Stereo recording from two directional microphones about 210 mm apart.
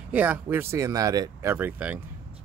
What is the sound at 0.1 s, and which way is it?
Speech, 10° right (ahead or behind).